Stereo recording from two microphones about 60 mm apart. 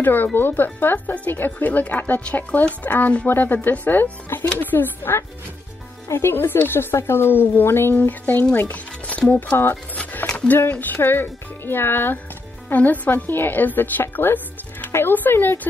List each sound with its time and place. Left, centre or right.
0.0 s speech: left
7.9 s speech: left
8.5 s music: left
10.3 s speech: left
14.1 s music: left
14.9 s speech: left